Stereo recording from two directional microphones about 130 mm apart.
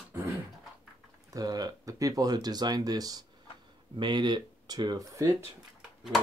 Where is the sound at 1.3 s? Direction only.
30° right (ahead or behind).